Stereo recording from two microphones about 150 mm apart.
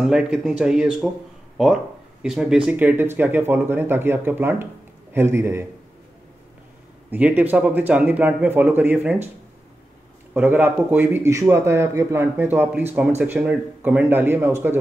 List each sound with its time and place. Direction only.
0.0 s speech: 5° right (ahead or behind)
2.2 s a man's voice: 5° right (ahead or behind)
7.1 s a man's voice: 10° right (ahead or behind)
10.3 s a man's voice: 15° right (ahead or behind)